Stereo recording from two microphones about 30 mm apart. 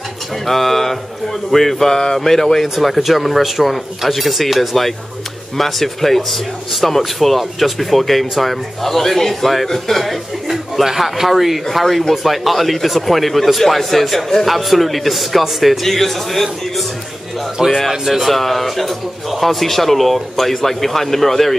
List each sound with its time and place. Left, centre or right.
0.5 s a man's voice: centre
9.3 s a man's voice: centre
15.8 s speech: centre
17.7 s a man's voice: centre